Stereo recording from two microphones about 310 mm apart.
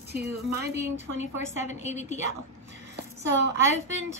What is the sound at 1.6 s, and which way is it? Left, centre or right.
Speech, left.